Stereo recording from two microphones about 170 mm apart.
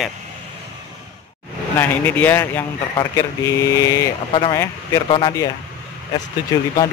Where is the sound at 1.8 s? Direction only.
10° left (ahead or behind).